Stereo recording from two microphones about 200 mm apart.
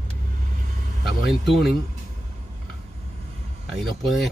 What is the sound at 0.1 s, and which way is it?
Vehicle, 40° right (ahead or behind).